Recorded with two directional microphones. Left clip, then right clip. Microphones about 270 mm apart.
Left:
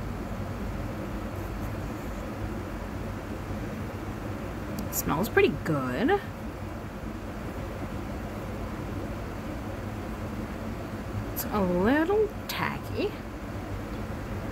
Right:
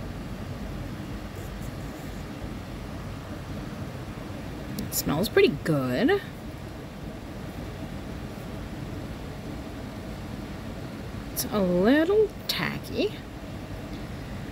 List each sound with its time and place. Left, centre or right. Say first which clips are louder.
4.7 s speech: right 1 dB; right
5.3 s speech: right 3 dB; right
11.5 s speech: right 3 dB; right